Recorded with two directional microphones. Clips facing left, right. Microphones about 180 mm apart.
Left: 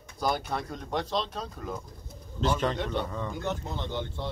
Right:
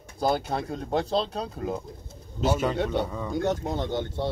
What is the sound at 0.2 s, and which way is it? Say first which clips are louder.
Speech: right 4 dB; 25° right (ahead or behind).